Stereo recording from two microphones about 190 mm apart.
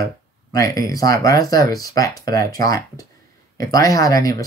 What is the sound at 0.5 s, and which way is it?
Speech, 20° left (ahead or behind).